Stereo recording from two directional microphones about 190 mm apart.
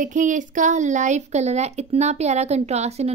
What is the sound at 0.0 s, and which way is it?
A woman's voice, 40° right (ahead or behind).